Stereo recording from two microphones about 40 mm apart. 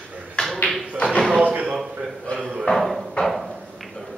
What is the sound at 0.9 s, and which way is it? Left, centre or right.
Tap, left.